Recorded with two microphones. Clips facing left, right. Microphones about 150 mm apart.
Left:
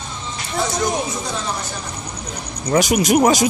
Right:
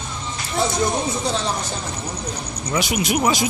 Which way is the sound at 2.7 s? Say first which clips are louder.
Left 6 dB; 45° left (ahead or behind).